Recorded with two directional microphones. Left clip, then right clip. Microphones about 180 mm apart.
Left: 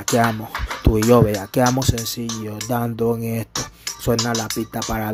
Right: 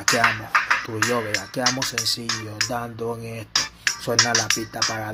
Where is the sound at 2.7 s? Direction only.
65° left (ahead or behind).